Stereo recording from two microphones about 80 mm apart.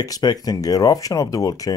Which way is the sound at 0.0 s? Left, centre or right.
Left.